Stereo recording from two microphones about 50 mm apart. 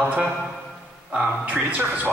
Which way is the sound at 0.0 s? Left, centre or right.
Right.